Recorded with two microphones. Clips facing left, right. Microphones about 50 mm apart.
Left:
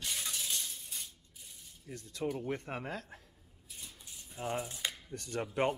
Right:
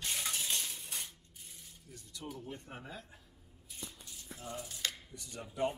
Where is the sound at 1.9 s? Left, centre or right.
Left.